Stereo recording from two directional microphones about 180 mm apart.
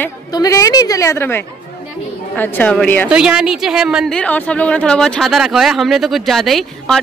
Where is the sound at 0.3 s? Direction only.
20° left (ahead or behind).